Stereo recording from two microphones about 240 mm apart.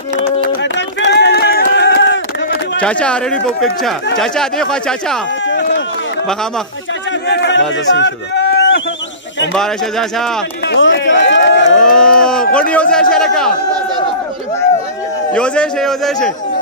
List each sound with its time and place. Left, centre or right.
0.2 s a sound: left
2.8 s speech: centre
5.4 s run: left
7.1 s a sound: left
7.7 s speech: left
9.6 s speech: centre
10.6 s run: left
12.0 s a sound: centre
12.5 s speech: centre
15.3 s speech: centre